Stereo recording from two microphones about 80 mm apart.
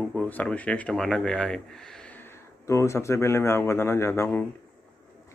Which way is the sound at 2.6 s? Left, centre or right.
Left.